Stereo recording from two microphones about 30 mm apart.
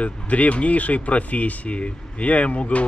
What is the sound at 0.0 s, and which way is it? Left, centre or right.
Speech, left.